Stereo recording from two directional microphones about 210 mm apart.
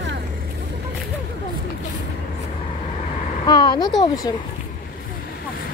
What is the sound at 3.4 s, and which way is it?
Speech, 20° left (ahead or behind).